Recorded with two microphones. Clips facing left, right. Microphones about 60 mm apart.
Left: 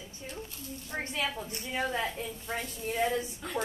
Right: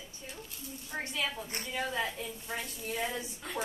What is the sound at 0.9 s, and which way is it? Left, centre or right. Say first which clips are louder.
A woman's voice: left 2 dB; centre.